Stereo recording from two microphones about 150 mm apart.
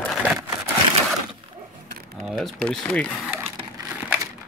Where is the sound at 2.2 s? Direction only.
Centre (ahead or behind).